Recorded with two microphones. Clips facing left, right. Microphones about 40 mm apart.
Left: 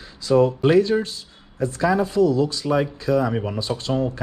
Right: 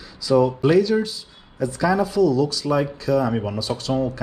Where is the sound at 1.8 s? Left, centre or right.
Left.